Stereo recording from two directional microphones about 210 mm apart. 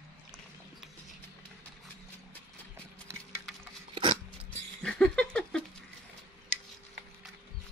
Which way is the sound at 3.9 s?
25° right (ahead or behind).